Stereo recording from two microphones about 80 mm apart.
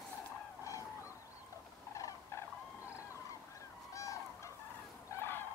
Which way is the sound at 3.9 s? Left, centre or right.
Left.